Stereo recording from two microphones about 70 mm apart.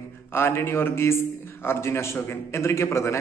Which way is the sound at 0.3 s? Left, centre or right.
Left.